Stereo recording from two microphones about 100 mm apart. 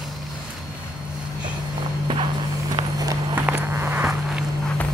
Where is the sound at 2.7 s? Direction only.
40° right (ahead or behind).